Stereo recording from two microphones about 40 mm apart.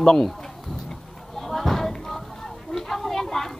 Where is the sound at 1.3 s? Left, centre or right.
Centre.